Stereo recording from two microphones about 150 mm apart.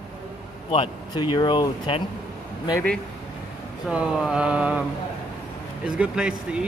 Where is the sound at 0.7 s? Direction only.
35° left (ahead or behind).